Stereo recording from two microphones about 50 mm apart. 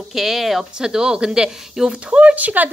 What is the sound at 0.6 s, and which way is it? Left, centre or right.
Speech, centre.